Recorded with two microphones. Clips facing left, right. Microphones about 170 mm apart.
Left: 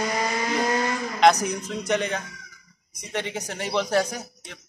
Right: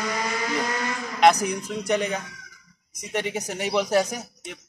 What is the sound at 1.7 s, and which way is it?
Speech, 5° right (ahead or behind).